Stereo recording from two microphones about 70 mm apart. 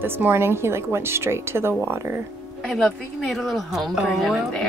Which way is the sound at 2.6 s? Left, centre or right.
Centre.